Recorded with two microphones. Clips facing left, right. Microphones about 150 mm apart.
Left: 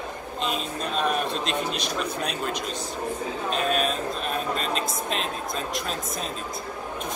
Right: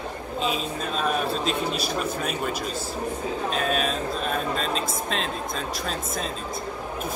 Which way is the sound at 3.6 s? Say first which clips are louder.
Left 2 dB; centre (ahead or behind).